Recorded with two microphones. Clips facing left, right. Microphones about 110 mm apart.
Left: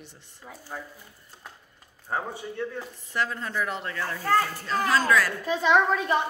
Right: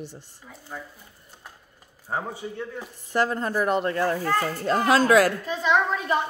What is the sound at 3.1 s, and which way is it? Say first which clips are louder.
A woman's voice: right 5 dB; 45° right (ahead or behind).